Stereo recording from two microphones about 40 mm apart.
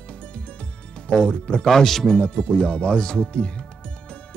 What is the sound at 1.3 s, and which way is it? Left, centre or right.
Speech, left.